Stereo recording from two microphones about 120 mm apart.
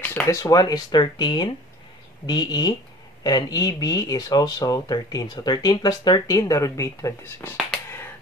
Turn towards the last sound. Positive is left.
turn(degrees=25)  # may be behind; listen again after turning